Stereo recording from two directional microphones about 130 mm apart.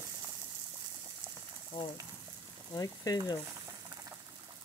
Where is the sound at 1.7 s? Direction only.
35° left (ahead or behind).